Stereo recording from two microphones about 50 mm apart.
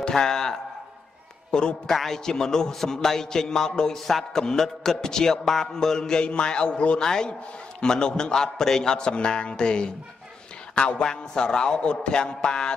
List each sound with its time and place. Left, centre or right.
0.0 s a man's voice: centre